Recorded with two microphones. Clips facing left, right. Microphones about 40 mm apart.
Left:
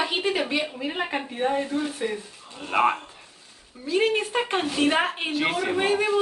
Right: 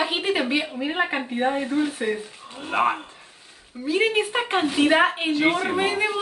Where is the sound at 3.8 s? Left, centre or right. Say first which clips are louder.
Right 2 dB; right.